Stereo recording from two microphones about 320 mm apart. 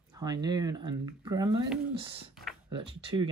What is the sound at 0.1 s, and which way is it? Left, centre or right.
Speech, centre.